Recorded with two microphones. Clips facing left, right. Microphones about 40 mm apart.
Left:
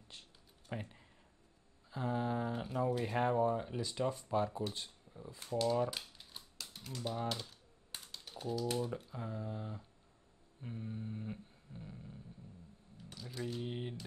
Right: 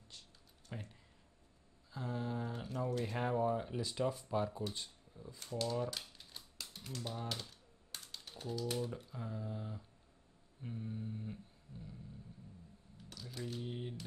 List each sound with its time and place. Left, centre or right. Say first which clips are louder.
0.1 s computer keyboard: left 2 dB; left
0.7 s speech: left 5 dB; left
8.1 s typing: left 4 dB; centre
9.1 s speech: left 2 dB; centre
10.6 s a sound: even; centre
13.6 s speech: left 2 dB; left